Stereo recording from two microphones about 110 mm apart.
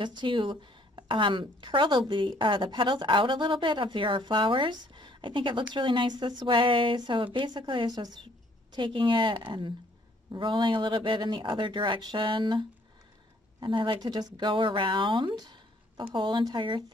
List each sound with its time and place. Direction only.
0.0 s a woman's voice: 45° right (ahead or behind)